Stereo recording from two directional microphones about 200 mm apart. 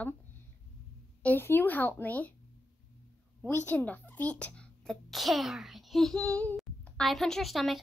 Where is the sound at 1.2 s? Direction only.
10° left (ahead or behind).